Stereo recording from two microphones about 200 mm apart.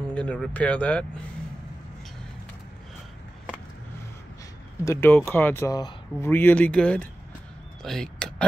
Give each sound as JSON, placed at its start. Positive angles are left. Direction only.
{"t": 0.1, "sound": "speech", "side_deg": 5}
{"t": 4.8, "sound": "speech", "side_deg": 10}
{"t": 7.8, "sound": "a sound", "side_deg": 0}